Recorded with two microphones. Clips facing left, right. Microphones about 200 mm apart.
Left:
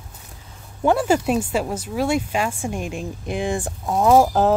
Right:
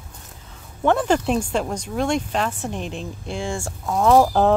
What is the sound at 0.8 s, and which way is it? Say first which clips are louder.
Speech: left 1 dB; 10° left (ahead or behind).